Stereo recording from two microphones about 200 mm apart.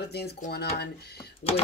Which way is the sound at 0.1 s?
50° left (ahead or behind).